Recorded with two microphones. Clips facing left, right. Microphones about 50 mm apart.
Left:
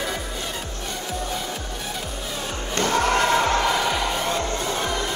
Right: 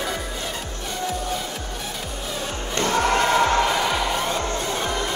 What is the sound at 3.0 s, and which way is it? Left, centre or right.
Music, right.